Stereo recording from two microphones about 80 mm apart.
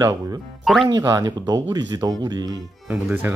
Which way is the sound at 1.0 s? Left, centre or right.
Right.